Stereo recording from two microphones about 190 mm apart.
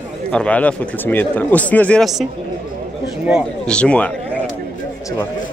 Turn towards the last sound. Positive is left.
turn(degrees=5)  # may be behind; listen again after turning